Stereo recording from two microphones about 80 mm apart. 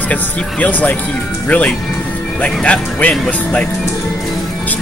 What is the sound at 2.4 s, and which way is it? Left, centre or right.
Speech, centre.